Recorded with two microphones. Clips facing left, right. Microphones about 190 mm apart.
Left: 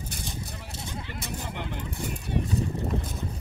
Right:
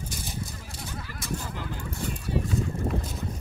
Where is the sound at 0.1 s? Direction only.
65° left (ahead or behind).